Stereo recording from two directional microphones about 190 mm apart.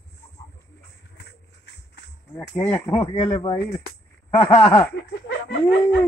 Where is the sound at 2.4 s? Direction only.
10° left (ahead or behind).